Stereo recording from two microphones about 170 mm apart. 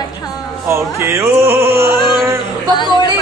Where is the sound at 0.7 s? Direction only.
15° right (ahead or behind).